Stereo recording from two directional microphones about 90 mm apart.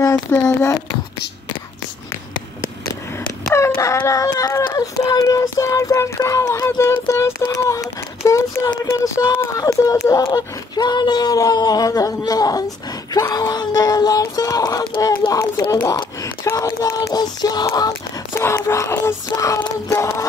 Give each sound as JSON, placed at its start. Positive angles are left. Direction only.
{"t": 0.3, "sound": "child singing", "side_deg": 30}
{"t": 3.8, "sound": "child singing", "side_deg": 35}
{"t": 6.9, "sound": "a sound", "side_deg": 30}
{"t": 7.5, "sound": "a child's voice", "side_deg": 40}
{"t": 9.3, "sound": "speech", "side_deg": 25}
{"t": 9.6, "sound": "speech", "side_deg": 45}
{"t": 10.3, "sound": "speech", "side_deg": 55}
{"t": 15.2, "sound": "child singing", "side_deg": 35}
{"t": 15.7, "sound": "speech", "side_deg": 45}
{"t": 17.6, "sound": "child singing", "side_deg": 40}
{"t": 18.3, "sound": "speech", "side_deg": 30}
{"t": 18.7, "sound": "child singing", "side_deg": 35}